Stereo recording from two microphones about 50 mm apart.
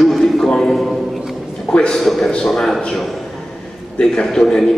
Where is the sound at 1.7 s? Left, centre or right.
Centre.